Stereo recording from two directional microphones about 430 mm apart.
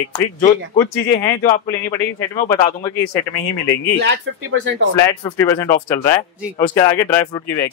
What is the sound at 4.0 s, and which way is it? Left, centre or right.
Speech, right.